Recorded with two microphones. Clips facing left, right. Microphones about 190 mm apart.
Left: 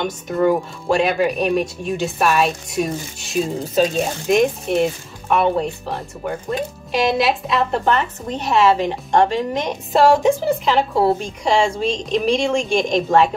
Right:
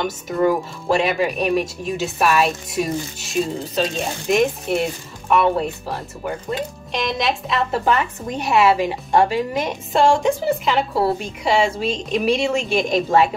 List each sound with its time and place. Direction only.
0.0 s speech: centre (ahead or behind)